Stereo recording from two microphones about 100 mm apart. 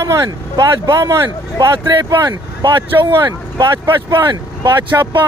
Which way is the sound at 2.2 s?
45° right (ahead or behind).